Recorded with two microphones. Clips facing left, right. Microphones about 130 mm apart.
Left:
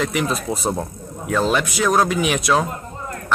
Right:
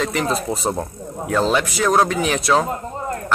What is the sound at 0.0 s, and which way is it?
A man's voice, 5° left (ahead or behind).